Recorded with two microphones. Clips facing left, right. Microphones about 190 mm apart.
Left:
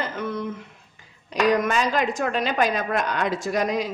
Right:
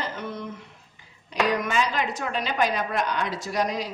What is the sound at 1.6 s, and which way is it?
A woman's voice, 45° left (ahead or behind).